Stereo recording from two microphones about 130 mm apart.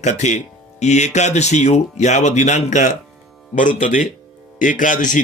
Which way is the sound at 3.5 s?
85° left.